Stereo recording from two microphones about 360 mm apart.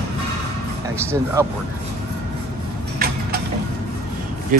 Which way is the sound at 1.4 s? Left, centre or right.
Centre.